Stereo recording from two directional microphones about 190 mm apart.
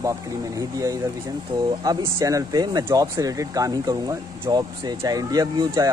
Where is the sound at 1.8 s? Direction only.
20° right (ahead or behind).